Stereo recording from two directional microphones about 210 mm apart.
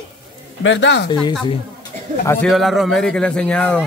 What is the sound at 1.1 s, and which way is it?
Speech, 20° left (ahead or behind).